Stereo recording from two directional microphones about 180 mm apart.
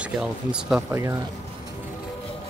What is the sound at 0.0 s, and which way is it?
Speech, 5° right (ahead or behind).